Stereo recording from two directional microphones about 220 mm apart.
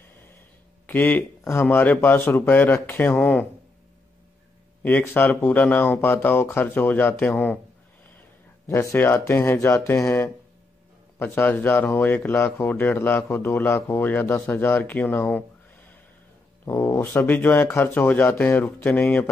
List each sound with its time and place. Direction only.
0.8 s speech: 10° left (ahead or behind)
4.8 s speech: 10° left (ahead or behind)
8.6 s speech: 10° left (ahead or behind)
16.6 s speech: 10° left (ahead or behind)